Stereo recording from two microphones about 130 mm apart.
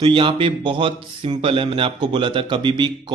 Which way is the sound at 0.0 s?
40° right (ahead or behind).